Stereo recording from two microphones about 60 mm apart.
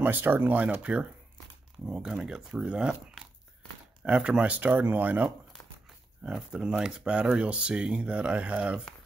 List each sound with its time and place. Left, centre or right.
0.0 s speech: right
1.9 s speech: centre; by 5.3 s right
6.2 s speech: centre